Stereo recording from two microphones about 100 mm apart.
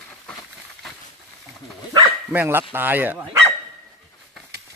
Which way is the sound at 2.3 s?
20° right (ahead or behind).